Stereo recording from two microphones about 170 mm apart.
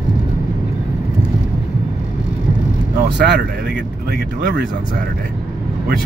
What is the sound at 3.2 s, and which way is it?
Speech, 80° right.